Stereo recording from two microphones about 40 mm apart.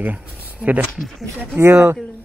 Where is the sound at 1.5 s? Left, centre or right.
Right.